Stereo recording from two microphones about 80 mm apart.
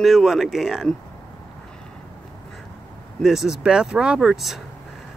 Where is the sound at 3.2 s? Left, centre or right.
Centre.